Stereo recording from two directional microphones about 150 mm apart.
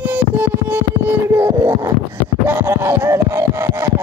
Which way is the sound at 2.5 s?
20° right (ahead or behind).